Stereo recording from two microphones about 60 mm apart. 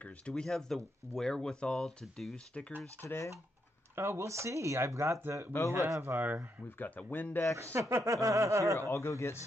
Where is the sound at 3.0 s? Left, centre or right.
Left.